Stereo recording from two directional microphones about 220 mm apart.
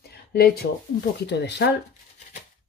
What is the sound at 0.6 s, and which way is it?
Speech, 50° left (ahead or behind).